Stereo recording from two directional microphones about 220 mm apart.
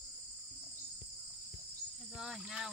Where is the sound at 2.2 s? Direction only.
Centre (ahead or behind).